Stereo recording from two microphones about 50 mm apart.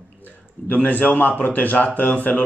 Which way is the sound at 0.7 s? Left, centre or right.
Left.